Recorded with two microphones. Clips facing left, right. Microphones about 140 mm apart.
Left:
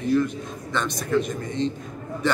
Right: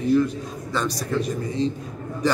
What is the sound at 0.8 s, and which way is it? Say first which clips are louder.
Speech: left 4 dB; 35° right (ahead or behind).